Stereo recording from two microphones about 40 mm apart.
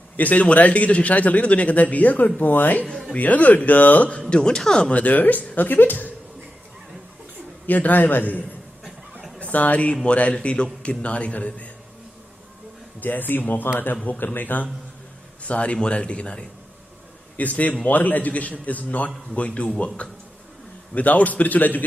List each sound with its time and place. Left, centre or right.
0.1 s a man's voice: left
4.2 s speech: left
4.9 s a man's voice: left
5.7 s a man's voice: left
7.6 s a man's voice: left
13.0 s a man's voice: left
15.4 s a man's voice: left
17.4 s a man's voice: left
20.9 s a man's voice: left